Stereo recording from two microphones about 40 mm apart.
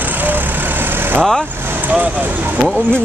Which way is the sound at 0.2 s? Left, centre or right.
Right.